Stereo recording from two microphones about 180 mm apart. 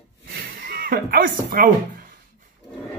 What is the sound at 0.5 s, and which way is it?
Speech, 55° right (ahead or behind).